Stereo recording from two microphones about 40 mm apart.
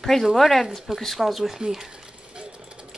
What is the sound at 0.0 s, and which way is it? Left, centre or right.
Speech, centre.